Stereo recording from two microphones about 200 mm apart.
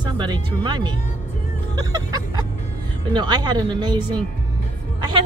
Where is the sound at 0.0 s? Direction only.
20° right (ahead or behind).